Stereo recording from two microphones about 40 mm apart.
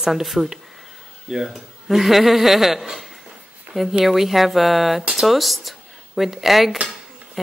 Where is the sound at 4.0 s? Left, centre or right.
Centre.